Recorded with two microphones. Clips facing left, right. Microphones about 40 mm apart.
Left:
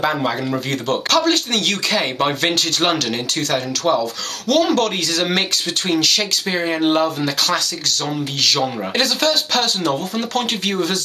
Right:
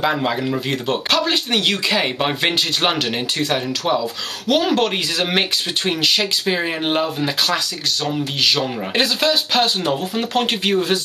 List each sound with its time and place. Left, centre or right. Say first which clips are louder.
0.0 s speech: even; centre